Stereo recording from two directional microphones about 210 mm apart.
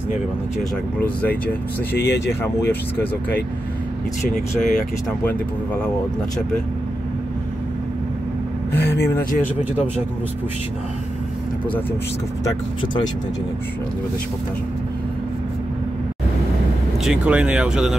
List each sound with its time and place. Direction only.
0.9 s speech: 5° left (ahead or behind)
2.0 s speech: 55° left (ahead or behind)
2.4 s speech: 10° left (ahead or behind)
4.2 s speech: 35° left (ahead or behind)
5.2 s speech: 5° left (ahead or behind)
8.7 s speech: 55° left (ahead or behind)
12.4 s speech: 20° left (ahead or behind)
17.0 s speech: 5° right (ahead or behind)